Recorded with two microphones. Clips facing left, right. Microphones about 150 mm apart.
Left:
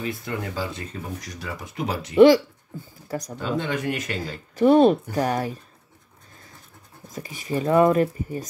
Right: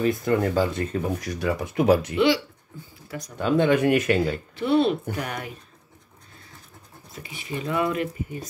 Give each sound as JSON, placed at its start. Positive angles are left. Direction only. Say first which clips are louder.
{"t": 0.0, "sound": "speech", "louder": "right 8 dB", "side_deg": -50}
{"t": 2.1, "sound": "speech", "louder": "left 8 dB", "side_deg": 45}
{"t": 3.3, "sound": "speech", "louder": "right 8 dB", "side_deg": -55}
{"t": 4.6, "sound": "speech", "louder": "left 6 dB", "side_deg": 40}
{"t": 7.1, "sound": "speech", "louder": "left 5 dB", "side_deg": 40}